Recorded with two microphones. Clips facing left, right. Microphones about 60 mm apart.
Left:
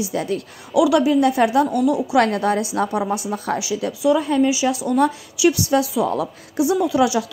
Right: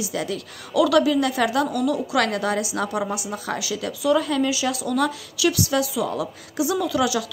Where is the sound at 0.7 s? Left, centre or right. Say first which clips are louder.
Left 2 dB; centre; by 3.7 s left.